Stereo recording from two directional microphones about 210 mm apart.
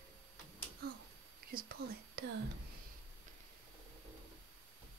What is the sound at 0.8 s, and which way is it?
Speech, 45° right (ahead or behind).